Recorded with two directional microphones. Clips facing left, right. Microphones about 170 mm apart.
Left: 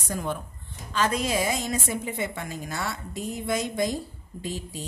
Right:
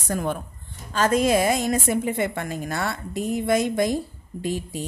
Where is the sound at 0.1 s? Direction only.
55° right (ahead or behind).